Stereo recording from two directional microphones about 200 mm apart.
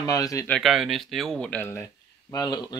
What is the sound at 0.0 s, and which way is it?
Speech, 15° left (ahead or behind).